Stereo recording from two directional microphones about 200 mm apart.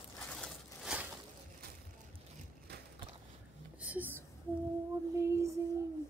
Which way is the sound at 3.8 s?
10° right (ahead or behind).